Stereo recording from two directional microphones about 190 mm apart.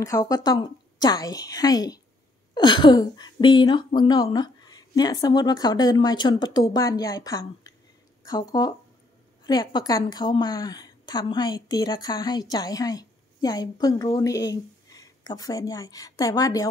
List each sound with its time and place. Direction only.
0.0 s speech: 20° left (ahead or behind)